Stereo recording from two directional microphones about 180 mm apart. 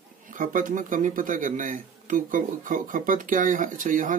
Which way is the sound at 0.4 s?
45° right (ahead or behind).